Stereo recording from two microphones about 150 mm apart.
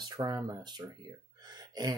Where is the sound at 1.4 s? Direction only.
25° right (ahead or behind).